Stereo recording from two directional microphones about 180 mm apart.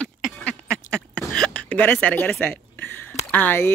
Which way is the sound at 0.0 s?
5° left (ahead or behind).